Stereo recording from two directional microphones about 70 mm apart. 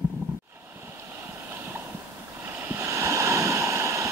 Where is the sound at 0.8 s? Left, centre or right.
Right.